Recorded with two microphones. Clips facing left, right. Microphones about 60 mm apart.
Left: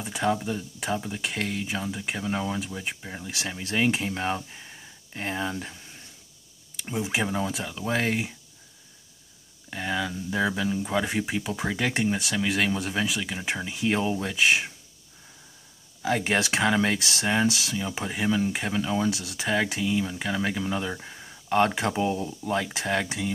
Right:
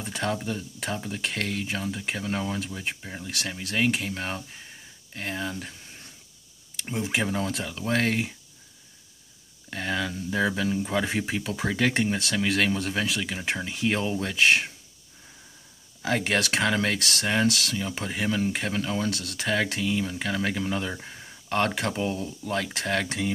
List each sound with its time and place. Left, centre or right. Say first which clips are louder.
0.0 s a sound: left 3 dB; centre
0.5 s speech: left 2 dB; centre
3.3 s speech: left 1 dB; centre
6.8 s speech: even; centre
9.7 s speech: even; centre
16.0 s speech: left 1 dB; centre
16.3 s speech: left 1 dB; centre
21.5 s speech: left 3 dB; centre